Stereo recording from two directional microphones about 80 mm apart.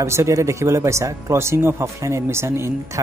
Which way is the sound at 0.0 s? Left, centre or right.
Right.